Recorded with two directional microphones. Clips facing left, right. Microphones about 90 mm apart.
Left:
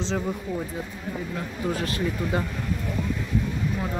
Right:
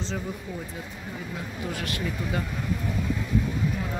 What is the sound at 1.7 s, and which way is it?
Speech, 30° left (ahead or behind).